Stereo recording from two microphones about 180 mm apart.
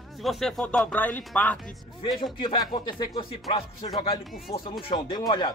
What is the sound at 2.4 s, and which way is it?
Speech, 25° left (ahead or behind).